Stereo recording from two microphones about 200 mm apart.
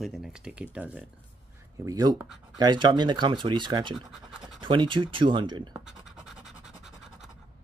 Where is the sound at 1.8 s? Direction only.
20° right (ahead or behind).